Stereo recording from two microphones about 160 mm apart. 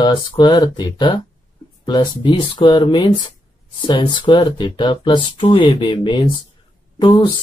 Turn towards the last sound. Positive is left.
turn(degrees=30)  # may be behind; listen again after turning